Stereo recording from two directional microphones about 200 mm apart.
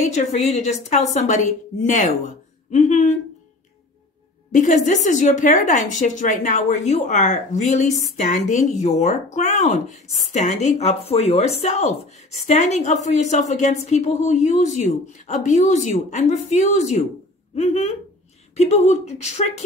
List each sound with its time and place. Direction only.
0.0 s speech: 35° left (ahead or behind)
4.5 s speech: 35° left (ahead or behind)